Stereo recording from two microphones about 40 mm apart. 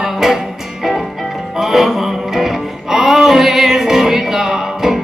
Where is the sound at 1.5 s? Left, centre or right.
Centre.